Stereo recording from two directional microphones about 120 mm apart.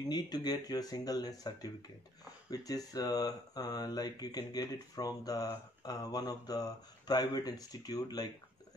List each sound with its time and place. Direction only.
0.1 s speech: 35° left (ahead or behind)